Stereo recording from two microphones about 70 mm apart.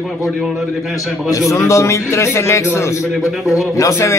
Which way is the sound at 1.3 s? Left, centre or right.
Left.